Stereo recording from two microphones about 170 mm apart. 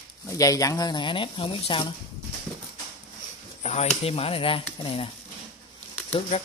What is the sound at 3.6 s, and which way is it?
Speech, 40° left (ahead or behind).